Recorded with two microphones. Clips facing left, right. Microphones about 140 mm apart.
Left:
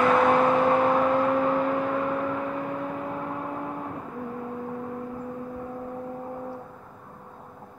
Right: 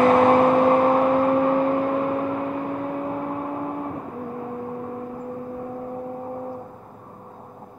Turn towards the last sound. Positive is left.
turn(degrees=-25)  # may be behind; listen again after turning